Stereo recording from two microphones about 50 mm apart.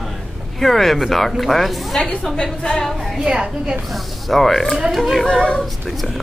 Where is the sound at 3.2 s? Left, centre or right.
Centre.